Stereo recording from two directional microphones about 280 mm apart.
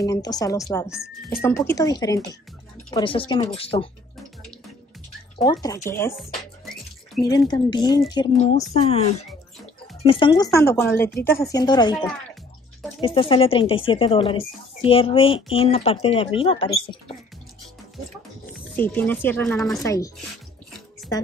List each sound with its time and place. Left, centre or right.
0.0 s speech: centre
5.4 s speech: centre
7.2 s speech: centre
18.5 s speech: centre